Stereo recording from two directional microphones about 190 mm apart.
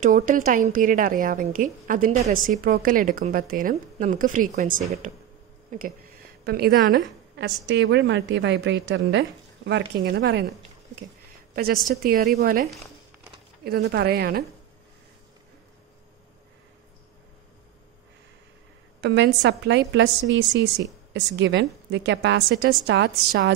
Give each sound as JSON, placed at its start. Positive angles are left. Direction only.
{"t": 0.0, "sound": "a woman's voice", "side_deg": -45}
{"t": 5.7, "sound": "a sound", "side_deg": -45}
{"t": 6.4, "sound": "a woman's voice", "side_deg": -55}
{"t": 7.6, "sound": "a woman's voice", "side_deg": -70}
{"t": 11.5, "sound": "a woman's voice", "side_deg": -50}
{"t": 13.7, "sound": "a woman's voice", "side_deg": -60}
{"t": 18.9, "sound": "a woman's voice", "side_deg": -65}